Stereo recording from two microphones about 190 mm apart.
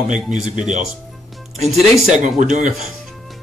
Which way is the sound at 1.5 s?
35° right (ahead or behind).